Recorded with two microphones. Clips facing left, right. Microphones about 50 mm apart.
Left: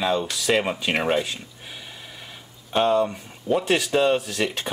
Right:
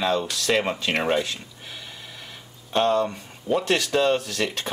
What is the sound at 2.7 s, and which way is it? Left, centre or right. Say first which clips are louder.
Speech: left 1 dB; centre.